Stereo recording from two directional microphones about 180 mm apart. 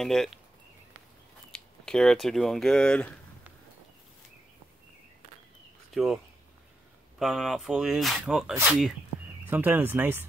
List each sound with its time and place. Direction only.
0.0 s speech: centre (ahead or behind)
1.5 s speech: 5° left (ahead or behind)
7.2 s speech: centre (ahead or behind)